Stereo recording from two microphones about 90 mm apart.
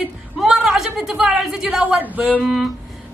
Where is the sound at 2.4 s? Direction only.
5° right (ahead or behind).